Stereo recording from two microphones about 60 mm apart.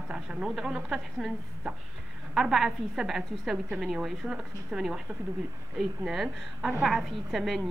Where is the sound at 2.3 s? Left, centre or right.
Centre.